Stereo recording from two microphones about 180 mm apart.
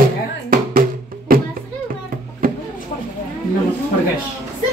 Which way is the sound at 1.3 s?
55° right (ahead or behind).